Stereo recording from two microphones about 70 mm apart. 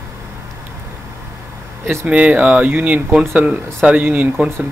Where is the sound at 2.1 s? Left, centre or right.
Centre.